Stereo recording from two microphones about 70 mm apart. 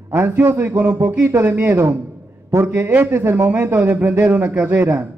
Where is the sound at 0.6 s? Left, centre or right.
Right.